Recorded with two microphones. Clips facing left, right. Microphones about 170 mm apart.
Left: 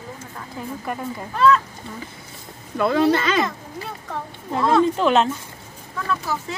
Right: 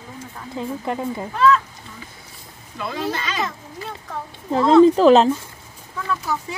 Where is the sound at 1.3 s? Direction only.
Centre (ahead or behind).